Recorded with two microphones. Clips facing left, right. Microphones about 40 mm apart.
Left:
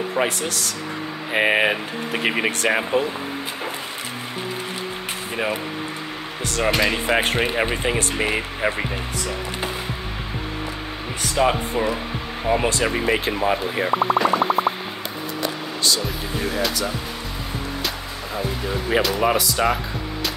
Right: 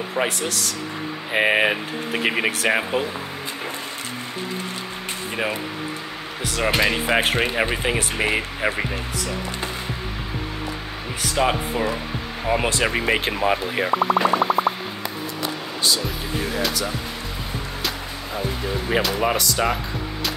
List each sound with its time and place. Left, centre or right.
0.1 s speech: centre
5.3 s speech: centre
11.3 s speech: centre
12.4 s speech: centre
12.8 s speech: right
13.8 s speech: centre
14.1 s a sound: centre
16.0 s speech: centre